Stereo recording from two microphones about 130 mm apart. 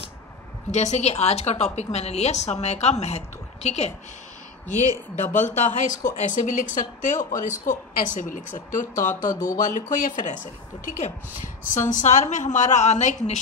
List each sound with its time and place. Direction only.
0.7 s a woman's voice: 60° left (ahead or behind)
5.1 s a woman's voice: 70° left (ahead or behind); by 8.8 s 90° left
9.1 s speech: 25° left (ahead or behind)
9.5 s speech: 75° left (ahead or behind)